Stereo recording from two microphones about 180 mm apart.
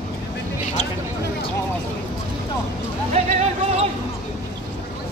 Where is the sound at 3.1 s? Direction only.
40° right (ahead or behind).